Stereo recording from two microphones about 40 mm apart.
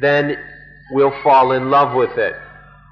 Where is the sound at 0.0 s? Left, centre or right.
Centre.